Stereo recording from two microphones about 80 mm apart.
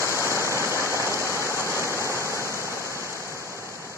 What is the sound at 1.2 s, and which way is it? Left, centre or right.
Waterfall, left.